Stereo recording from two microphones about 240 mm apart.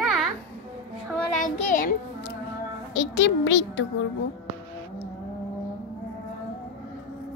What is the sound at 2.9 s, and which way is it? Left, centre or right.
Speech, left.